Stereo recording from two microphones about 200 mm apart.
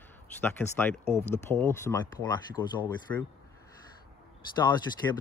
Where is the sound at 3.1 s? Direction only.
10° left (ahead or behind).